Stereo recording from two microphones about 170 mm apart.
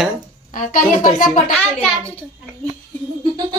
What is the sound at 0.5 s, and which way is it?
Speech, 50° left (ahead or behind).